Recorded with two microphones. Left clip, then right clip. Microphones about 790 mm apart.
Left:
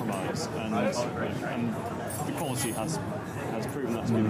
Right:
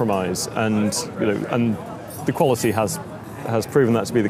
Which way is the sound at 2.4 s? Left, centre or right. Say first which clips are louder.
Right 13 dB; right.